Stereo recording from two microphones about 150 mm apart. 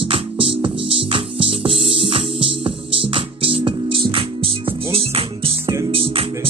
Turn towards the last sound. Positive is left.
turn(degrees=-35)  # may be behind; listen again after turning